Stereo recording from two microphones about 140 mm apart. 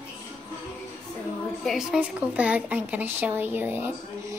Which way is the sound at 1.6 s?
Centre (ahead or behind).